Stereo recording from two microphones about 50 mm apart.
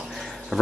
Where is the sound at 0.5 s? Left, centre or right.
Centre.